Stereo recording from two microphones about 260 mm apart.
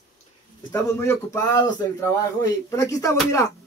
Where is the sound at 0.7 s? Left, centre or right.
Centre.